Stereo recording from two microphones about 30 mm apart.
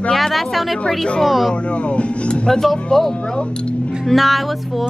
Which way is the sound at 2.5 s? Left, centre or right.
Centre.